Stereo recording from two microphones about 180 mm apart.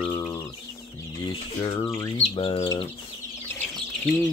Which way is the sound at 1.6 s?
25° left (ahead or behind).